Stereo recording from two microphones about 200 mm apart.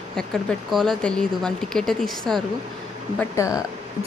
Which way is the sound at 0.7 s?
Centre (ahead or behind).